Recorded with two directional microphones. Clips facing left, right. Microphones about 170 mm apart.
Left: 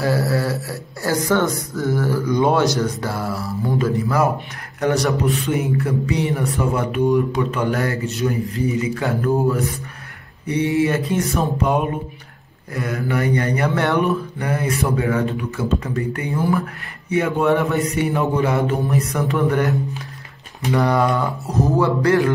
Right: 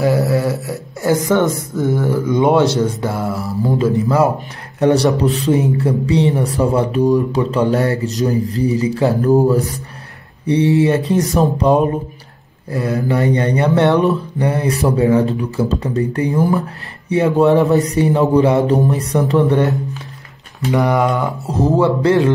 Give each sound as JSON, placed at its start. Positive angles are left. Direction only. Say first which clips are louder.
{"t": 0.0, "sound": "a sound", "louder": "right 5 dB", "side_deg": -20}
{"t": 1.8, "sound": "speech", "louder": "right 3 dB", "side_deg": -20}
{"t": 13.7, "sound": "speech", "louder": "right 10 dB", "side_deg": -20}
{"t": 13.9, "sound": "speech", "louder": "right 4 dB", "side_deg": -30}
{"t": 19.4, "sound": "speech", "louder": "right 4 dB", "side_deg": -20}
{"t": 20.7, "sound": "speech", "louder": "right 2 dB", "side_deg": -15}